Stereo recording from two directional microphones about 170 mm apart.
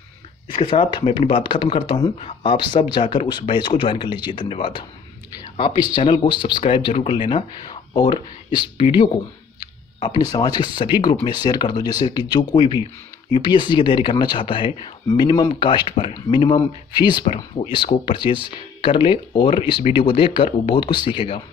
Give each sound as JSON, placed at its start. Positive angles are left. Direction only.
{"t": 0.6, "sound": "speech", "side_deg": 30}
{"t": 5.9, "sound": "speech", "side_deg": 25}